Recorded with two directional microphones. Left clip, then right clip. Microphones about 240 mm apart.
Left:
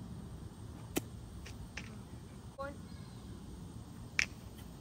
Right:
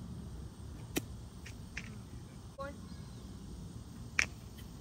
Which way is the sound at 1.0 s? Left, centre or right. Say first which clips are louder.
Even; centre.